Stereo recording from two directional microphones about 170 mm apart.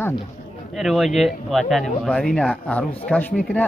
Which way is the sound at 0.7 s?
Centre (ahead or behind).